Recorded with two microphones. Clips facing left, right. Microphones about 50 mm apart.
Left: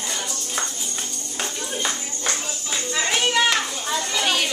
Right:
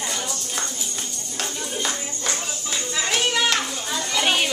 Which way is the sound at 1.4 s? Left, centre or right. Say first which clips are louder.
Left 1 dB; centre.